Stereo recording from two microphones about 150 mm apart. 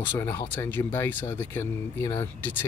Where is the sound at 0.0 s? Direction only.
15° left (ahead or behind).